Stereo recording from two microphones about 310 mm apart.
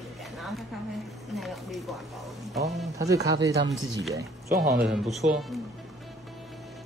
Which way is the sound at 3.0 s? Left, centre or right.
Centre.